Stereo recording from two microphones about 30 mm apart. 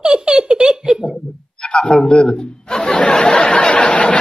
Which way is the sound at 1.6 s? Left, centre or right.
Left.